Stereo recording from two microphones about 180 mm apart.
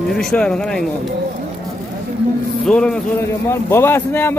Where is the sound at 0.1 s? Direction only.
5° left (ahead or behind).